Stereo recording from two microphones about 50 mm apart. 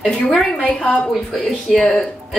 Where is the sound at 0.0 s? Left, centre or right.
Centre.